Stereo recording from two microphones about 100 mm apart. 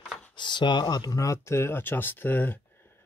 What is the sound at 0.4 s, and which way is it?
Speech, 50° left (ahead or behind).